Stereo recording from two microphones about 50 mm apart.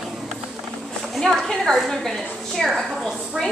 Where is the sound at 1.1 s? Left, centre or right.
Centre.